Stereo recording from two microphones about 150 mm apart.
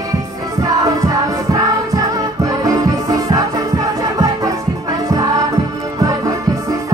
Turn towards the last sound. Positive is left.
turn(degrees=-20)  # may be behind; listen again after turning